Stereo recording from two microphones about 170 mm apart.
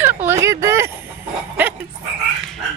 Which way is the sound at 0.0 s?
10° right (ahead or behind).